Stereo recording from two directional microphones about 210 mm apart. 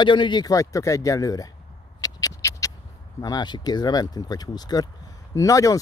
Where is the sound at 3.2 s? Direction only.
20° left (ahead or behind).